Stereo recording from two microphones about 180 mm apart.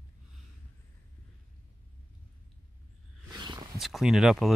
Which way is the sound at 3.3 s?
25° right (ahead or behind).